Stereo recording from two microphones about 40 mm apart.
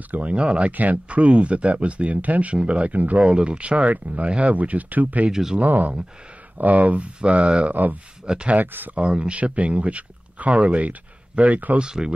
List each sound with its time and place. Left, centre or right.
0.1 s speech: right
3.9 s speech: right
5.3 s speech: centre
5.6 s speech: right
7.2 s speech: right
7.7 s speech: right
8.9 s speech: right
11.8 s speech: right